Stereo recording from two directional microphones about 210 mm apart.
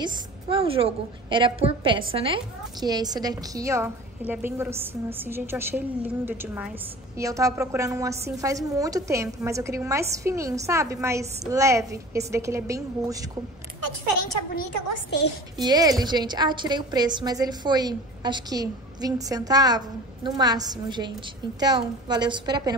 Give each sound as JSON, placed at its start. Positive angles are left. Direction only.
{"t": 0.0, "sound": "a woman's voice", "side_deg": -25}
{"t": 15.1, "sound": "a woman's voice", "side_deg": 55}
{"t": 15.5, "sound": "a woman's voice", "side_deg": -20}